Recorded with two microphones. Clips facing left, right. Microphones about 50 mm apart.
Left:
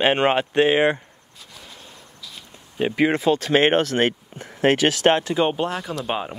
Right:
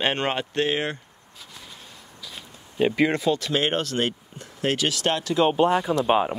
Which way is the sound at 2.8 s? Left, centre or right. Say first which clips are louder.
Even; centre.